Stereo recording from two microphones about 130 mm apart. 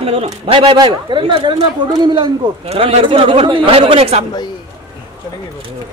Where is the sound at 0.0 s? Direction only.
50° right (ahead or behind).